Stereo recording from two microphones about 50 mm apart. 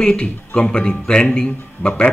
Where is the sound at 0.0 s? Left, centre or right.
Centre.